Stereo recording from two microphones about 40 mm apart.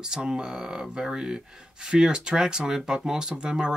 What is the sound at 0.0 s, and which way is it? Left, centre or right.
Speech, centre.